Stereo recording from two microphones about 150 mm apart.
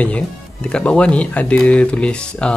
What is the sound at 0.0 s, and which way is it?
Speech, 5° left (ahead or behind).